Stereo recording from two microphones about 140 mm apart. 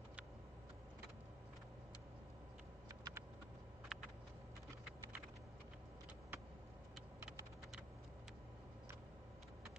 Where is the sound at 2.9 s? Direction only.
20° right (ahead or behind).